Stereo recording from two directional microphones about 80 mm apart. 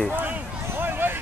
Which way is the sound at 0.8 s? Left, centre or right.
Right.